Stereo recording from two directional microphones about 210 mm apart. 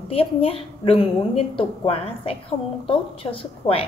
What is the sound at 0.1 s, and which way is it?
A woman's voice, 25° left (ahead or behind).